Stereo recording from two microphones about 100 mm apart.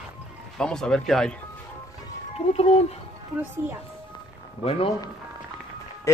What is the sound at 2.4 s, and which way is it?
Speech, 75° left (ahead or behind).